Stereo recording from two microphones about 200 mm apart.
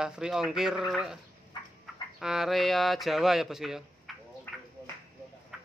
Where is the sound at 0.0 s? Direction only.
5° right (ahead or behind).